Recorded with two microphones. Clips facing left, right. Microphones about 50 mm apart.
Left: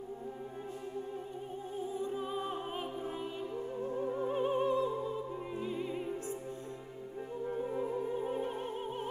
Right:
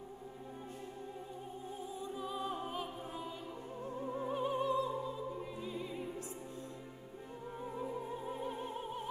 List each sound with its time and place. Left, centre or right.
2.0 s music: left
5.6 s opera: left
8.3 s opera: left